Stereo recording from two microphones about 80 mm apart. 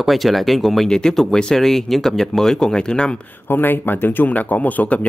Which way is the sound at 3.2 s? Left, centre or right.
Left.